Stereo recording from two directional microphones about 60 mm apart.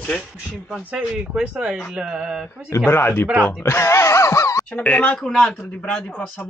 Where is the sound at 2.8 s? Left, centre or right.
Left.